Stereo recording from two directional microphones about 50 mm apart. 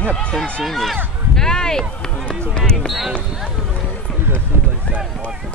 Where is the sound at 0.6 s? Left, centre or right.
Centre.